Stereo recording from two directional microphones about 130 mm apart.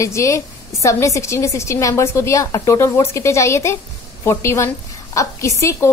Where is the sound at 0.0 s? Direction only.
25° left (ahead or behind).